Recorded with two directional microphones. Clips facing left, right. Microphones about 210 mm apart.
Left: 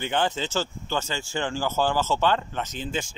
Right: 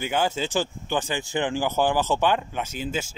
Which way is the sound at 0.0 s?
10° right (ahead or behind).